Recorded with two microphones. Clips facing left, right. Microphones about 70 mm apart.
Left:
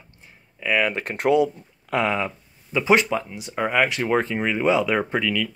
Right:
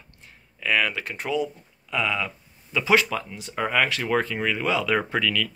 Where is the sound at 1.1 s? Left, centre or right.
Left.